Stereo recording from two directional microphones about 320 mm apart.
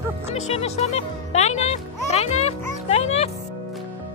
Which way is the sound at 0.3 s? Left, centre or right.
Centre.